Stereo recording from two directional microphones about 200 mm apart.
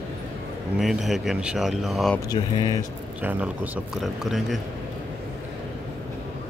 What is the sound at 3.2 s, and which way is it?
A man's voice, 5° right (ahead or behind).